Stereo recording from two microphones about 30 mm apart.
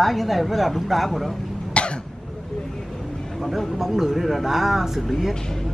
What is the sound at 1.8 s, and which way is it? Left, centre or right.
Cough, left.